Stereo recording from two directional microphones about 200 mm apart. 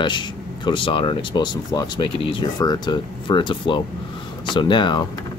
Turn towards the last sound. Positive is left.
turn(degrees=20)  # may be behind; listen again after turning